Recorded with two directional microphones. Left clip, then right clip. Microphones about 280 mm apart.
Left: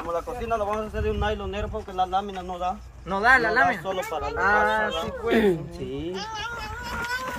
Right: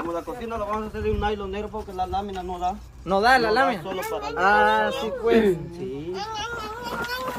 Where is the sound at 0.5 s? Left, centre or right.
Left; by 2.8 s centre.